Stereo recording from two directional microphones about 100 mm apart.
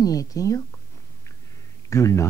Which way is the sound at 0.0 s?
35° left (ahead or behind).